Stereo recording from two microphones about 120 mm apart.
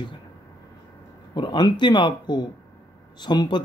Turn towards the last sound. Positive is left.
turn(degrees=40)  # may be behind; listen again after turning